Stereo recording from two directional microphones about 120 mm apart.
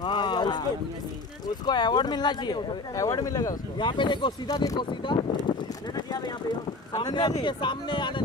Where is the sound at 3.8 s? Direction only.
40° left (ahead or behind).